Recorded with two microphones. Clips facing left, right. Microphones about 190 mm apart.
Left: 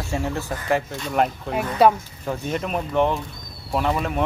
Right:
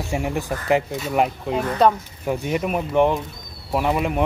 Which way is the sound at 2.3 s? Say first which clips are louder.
Right 3 dB; 10° right (ahead or behind).